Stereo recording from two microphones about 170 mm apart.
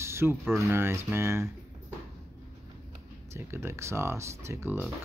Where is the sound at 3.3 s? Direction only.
15° right (ahead or behind).